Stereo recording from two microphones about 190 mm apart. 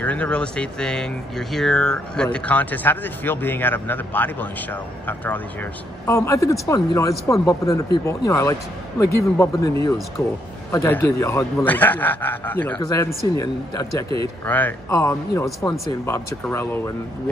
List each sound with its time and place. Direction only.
0.0 s speech: 5° left (ahead or behind)
10.7 s speech: 15° left (ahead or behind)